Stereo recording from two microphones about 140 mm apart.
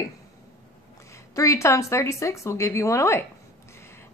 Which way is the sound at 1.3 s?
20° left (ahead or behind).